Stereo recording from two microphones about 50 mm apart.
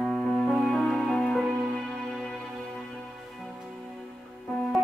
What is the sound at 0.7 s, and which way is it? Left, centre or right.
Music, centre.